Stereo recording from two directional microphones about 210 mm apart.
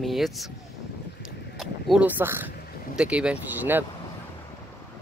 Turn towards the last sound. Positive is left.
turn(degrees=-10)  # may be behind; listen again after turning